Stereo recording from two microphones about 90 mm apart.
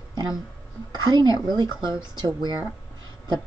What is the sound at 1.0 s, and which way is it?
Speech, 55° right (ahead or behind).